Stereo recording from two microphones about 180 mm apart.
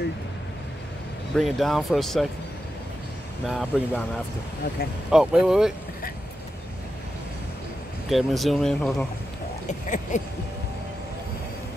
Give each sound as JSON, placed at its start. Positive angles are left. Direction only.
{"t": 1.3, "sound": "speech", "side_deg": 0}
{"t": 3.4, "sound": "speech", "side_deg": 0}
{"t": 5.1, "sound": "speech", "side_deg": -5}
{"t": 8.1, "sound": "speech", "side_deg": 0}
{"t": 9.7, "sound": "a sound", "side_deg": 45}